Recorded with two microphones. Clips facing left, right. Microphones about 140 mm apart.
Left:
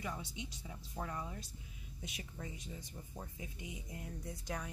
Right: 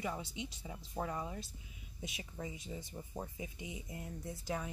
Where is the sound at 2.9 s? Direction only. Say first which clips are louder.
Right 5 dB; 25° right (ahead or behind).